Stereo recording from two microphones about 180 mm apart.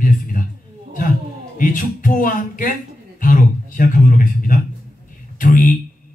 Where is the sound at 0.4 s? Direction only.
50° left (ahead or behind).